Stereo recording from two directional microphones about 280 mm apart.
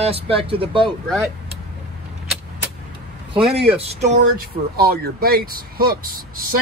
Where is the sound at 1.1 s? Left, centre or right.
Centre.